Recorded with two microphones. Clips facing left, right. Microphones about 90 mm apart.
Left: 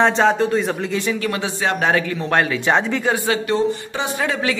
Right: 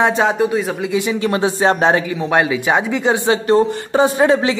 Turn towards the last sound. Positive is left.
turn(degrees=-30)  # may be behind; listen again after turning